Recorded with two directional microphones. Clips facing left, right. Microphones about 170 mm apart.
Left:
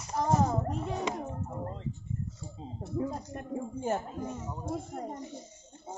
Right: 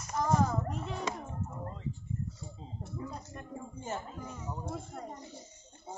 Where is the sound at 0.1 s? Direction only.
25° left (ahead or behind).